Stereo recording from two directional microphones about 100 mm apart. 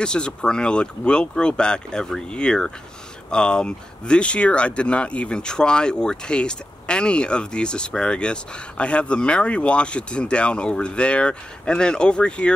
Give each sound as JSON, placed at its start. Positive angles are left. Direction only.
{"t": 0.0, "sound": "speech", "side_deg": 10}